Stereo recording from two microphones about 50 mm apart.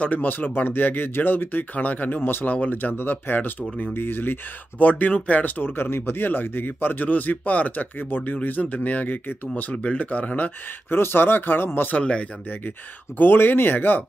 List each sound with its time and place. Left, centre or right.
0.0 s speech: left
4.7 s speech: left
5.6 s speech: left
12.0 s speech: left
13.2 s speech: left